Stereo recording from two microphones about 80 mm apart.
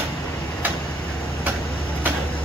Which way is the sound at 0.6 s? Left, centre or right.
Right.